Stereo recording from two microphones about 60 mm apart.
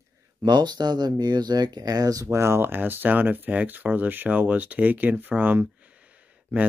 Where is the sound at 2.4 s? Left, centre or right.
Right.